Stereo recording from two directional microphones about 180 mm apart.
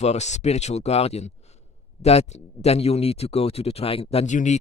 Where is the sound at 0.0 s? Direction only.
40° left (ahead or behind).